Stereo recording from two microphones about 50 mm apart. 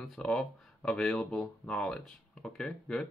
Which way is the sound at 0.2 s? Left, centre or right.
Centre.